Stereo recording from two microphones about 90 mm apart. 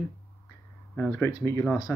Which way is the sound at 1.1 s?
35° left (ahead or behind).